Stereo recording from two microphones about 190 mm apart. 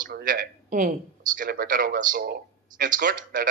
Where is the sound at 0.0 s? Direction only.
45° right (ahead or behind).